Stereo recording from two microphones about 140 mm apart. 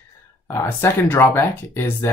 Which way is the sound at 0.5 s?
15° left (ahead or behind).